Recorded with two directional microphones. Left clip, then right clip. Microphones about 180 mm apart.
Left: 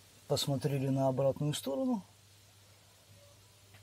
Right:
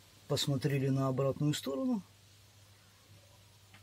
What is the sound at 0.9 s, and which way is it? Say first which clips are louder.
Speech: left 7 dB; 15° left (ahead or behind).